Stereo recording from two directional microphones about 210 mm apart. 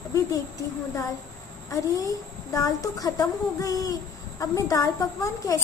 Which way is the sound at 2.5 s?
15° left (ahead or behind).